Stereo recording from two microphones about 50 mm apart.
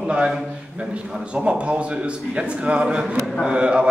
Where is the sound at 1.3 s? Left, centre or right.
Right.